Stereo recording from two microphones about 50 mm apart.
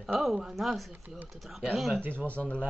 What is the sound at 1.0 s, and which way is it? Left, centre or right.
Speech, right.